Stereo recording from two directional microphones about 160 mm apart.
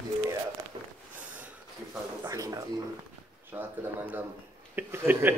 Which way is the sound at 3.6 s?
15° right (ahead or behind).